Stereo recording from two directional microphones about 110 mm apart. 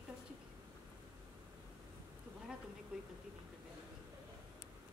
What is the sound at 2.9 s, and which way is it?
Speech, 10° right (ahead or behind).